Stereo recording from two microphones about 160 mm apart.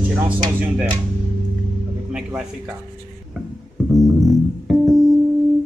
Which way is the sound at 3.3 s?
5° right (ahead or behind).